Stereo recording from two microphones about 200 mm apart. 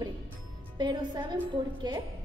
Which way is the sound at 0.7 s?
20° right (ahead or behind).